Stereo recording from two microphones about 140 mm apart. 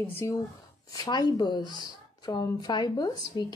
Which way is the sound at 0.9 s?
25° left (ahead or behind).